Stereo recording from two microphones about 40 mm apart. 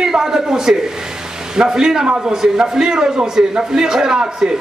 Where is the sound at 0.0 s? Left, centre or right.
Centre.